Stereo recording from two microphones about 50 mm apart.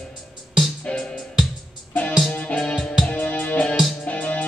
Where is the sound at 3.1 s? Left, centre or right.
Left.